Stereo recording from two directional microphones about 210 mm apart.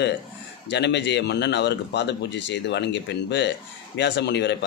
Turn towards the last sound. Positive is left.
turn(degrees=55)  # may be behind; listen again after turning